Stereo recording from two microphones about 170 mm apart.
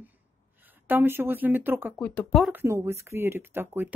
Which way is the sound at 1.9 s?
10° left (ahead or behind).